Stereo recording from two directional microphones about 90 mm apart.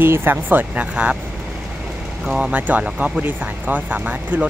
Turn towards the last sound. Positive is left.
turn(degrees=-15)  # may be behind; listen again after turning